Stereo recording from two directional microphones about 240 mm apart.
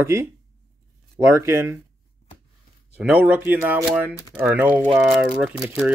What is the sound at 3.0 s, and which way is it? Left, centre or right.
Speech, centre.